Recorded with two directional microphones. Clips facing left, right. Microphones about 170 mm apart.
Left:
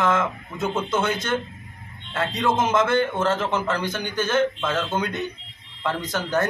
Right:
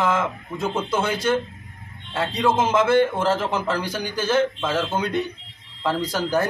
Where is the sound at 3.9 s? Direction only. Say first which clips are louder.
Right 1 dB; 35° right (ahead or behind).